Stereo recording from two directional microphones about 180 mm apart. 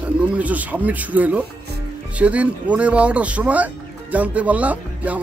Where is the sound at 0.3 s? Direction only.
10° right (ahead or behind).